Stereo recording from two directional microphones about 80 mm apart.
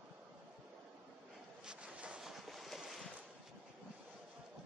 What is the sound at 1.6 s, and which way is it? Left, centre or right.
Boat, centre.